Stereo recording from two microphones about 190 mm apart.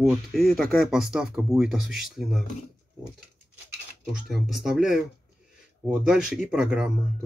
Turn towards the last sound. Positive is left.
turn(degrees=-5)  # may be behind; listen again after turning